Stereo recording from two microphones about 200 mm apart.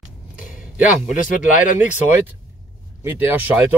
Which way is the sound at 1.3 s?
40° left (ahead or behind).